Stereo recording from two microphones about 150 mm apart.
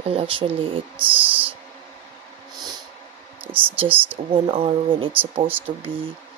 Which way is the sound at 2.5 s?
30° right (ahead or behind).